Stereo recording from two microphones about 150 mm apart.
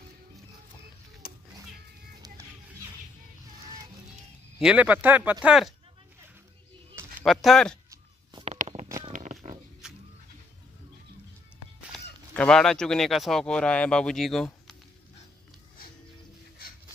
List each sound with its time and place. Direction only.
1.2 s cat: 90° left
4.6 s speech: 5° right (ahead or behind)
7.2 s speech: 5° left (ahead or behind)
8.5 s a sound: 50° right (ahead or behind)
9.1 s pig: 55° right (ahead or behind)
11.9 s speech: 5° left (ahead or behind)